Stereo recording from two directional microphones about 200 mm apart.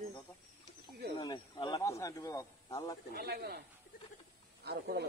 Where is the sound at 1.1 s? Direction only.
20° left (ahead or behind).